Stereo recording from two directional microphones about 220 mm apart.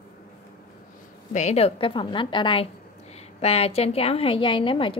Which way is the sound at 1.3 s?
30° left (ahead or behind).